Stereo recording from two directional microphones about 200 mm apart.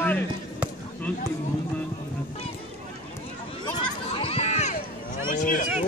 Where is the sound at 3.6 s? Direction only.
25° left (ahead or behind).